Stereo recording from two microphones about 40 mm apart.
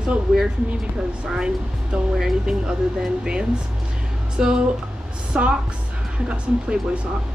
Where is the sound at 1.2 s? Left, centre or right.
Right.